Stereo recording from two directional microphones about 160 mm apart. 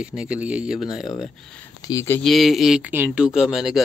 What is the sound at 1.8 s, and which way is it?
Speech, 20° left (ahead or behind).